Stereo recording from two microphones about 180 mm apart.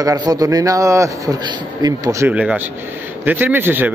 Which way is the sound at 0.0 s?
20° right (ahead or behind).